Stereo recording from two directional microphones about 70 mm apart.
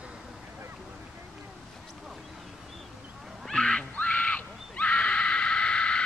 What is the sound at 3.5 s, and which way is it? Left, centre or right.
Neigh, centre.